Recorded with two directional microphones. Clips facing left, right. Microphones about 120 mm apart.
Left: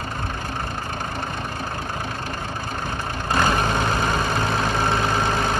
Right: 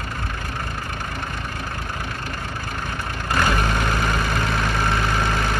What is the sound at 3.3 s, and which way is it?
Vehicle, 30° left (ahead or behind).